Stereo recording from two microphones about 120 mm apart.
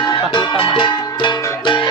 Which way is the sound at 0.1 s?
40° left (ahead or behind).